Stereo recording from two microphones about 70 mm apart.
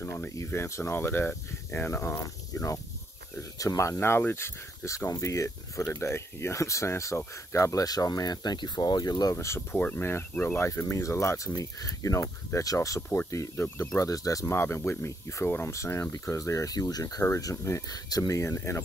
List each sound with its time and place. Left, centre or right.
0.0 s speech: left
2.1 s speech: left
4.8 s speech: left
7.7 s speech: left
9.3 s speech: left
9.8 s speech: left
10.8 s speech: left
13.9 s speech: left
14.5 s speech: left